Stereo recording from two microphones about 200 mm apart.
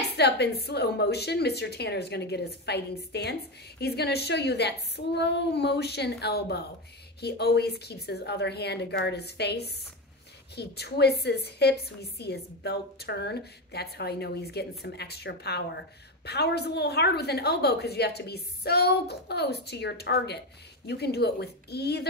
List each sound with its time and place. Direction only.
0.1 s a woman's voice: 55° left (ahead or behind)